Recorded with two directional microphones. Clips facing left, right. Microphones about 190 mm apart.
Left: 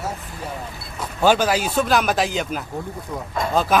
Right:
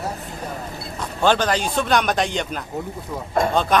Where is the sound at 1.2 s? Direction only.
10° left (ahead or behind).